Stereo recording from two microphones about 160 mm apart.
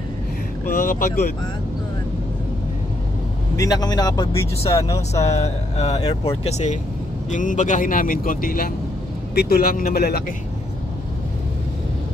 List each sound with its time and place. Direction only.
0.7 s speech: 60° left (ahead or behind)
3.5 s speech: 20° left (ahead or behind)
5.2 s speech: 45° left (ahead or behind)
5.9 s speech: 25° left (ahead or behind)
6.4 s speech: 45° left (ahead or behind)
9.3 s speech: 75° left (ahead or behind)